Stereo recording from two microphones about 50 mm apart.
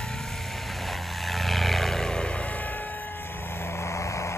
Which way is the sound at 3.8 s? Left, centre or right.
Left.